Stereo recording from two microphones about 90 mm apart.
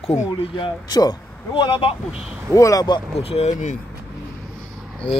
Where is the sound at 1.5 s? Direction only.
70° left (ahead or behind).